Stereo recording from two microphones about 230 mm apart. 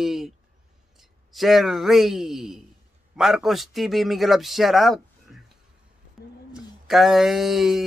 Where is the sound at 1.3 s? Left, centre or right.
Centre.